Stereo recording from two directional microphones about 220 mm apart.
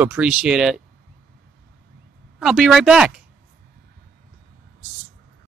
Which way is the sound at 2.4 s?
Centre (ahead or behind).